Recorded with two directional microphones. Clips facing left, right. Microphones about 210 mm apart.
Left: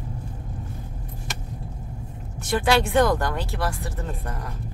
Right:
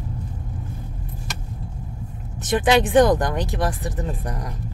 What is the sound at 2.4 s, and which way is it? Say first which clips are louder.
Speech: right 3 dB; 20° right (ahead or behind).